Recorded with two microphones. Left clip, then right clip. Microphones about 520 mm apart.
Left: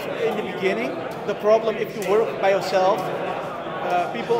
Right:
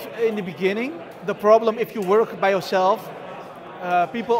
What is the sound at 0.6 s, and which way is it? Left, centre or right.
A man's voice, right.